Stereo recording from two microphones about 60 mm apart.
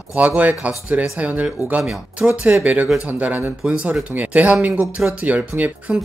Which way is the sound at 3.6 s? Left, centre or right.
Centre.